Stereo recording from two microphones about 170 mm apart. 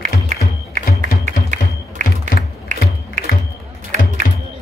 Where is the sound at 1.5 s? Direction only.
45° right (ahead or behind).